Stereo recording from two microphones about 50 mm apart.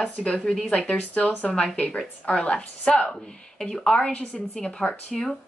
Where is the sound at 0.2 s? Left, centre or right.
Left.